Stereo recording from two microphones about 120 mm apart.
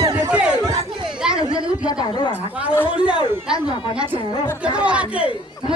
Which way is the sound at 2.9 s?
10° right (ahead or behind).